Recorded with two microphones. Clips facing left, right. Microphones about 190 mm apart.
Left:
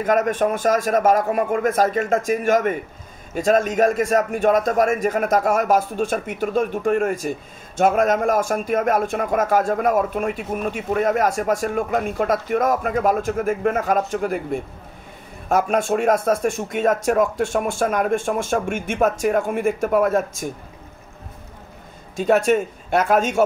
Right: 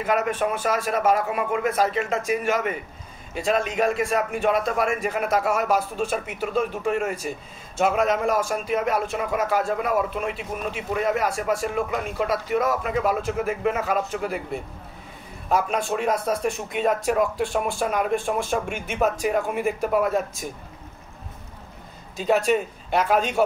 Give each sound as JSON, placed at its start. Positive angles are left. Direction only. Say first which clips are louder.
{"t": 0.0, "sound": "speech", "louder": "left 4 dB", "side_deg": 45}
{"t": 22.1, "sound": "speech", "louder": "left 4 dB", "side_deg": 50}